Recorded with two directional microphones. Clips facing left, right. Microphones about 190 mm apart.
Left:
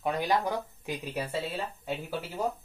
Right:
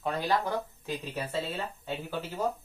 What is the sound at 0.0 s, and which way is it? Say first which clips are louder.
Speech: left 1 dB; 15° left (ahead or behind).